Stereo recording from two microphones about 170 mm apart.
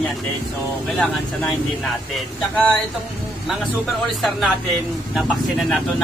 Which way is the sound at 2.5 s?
5° left (ahead or behind).